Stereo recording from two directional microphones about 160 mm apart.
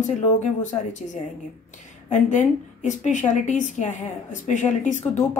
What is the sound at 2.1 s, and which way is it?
A woman's voice, 50° left (ahead or behind).